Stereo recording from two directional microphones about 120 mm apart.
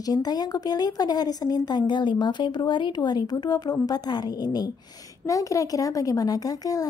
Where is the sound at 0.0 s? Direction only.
35° left (ahead or behind).